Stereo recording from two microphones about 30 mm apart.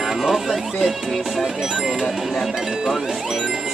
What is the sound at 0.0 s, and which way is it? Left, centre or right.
Speech, centre.